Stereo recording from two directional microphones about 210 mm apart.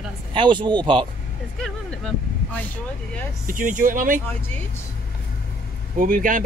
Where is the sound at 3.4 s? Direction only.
40° right (ahead or behind).